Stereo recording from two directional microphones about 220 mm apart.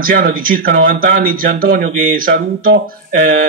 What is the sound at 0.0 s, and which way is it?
Speech, 40° right (ahead or behind).